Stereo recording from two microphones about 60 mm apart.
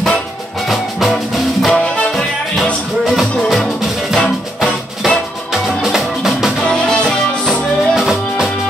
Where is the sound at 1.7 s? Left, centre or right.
Left.